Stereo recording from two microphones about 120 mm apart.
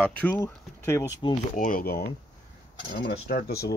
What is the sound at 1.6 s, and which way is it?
Speech, 90° left.